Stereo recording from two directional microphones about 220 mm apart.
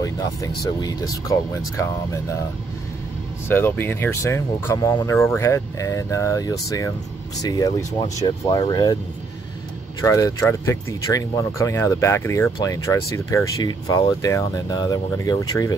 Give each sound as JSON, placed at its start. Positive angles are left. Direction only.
{"t": 0.0, "sound": "speech", "side_deg": 15}
{"t": 3.4, "sound": "speech", "side_deg": 10}
{"t": 10.0, "sound": "speech", "side_deg": 15}